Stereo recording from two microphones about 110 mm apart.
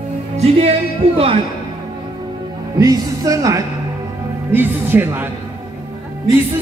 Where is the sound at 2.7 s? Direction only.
35° right (ahead or behind).